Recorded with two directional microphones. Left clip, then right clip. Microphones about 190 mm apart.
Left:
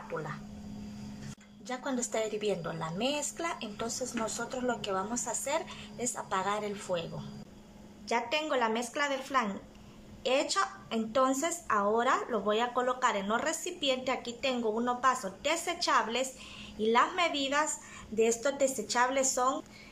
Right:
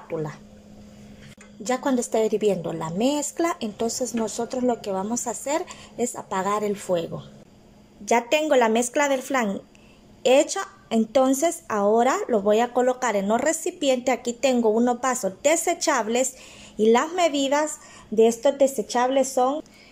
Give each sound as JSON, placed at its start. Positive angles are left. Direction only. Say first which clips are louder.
{"t": 0.1, "sound": "a woman's voice", "louder": "right 8 dB", "side_deg": -25}
{"t": 1.6, "sound": "a woman's voice", "louder": "right 12 dB", "side_deg": -30}